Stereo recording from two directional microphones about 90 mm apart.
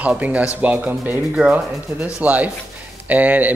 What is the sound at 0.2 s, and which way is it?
A man's voice, 15° right (ahead or behind).